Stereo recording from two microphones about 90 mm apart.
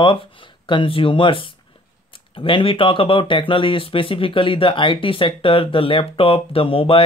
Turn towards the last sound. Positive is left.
turn(degrees=85)